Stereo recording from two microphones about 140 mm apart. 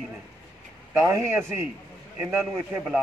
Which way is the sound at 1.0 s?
20° right (ahead or behind).